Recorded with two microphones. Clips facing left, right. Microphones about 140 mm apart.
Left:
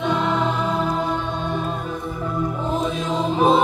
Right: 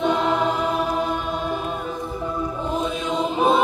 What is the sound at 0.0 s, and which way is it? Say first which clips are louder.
Music: right 1 dB; 15° right (ahead or behind).